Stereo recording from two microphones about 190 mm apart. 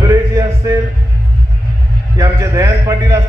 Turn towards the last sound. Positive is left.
turn(degrees=-15)  # may be behind; listen again after turning